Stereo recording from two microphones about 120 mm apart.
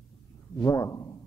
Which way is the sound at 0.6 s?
30° left (ahead or behind).